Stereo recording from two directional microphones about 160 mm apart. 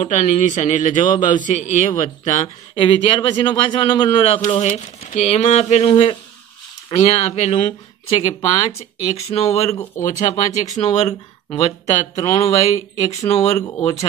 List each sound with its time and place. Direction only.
0.0 s a man's voice: 50° left (ahead or behind)
2.4 s a man's voice: 35° left (ahead or behind)
13.6 s speech: 20° left (ahead or behind)